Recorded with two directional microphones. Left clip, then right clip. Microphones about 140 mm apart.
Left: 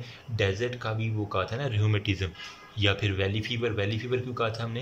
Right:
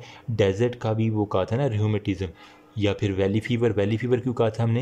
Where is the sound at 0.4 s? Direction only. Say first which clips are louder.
Right 6 dB; 50° right (ahead or behind).